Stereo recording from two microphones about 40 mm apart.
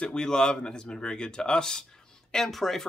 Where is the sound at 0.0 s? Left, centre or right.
Centre.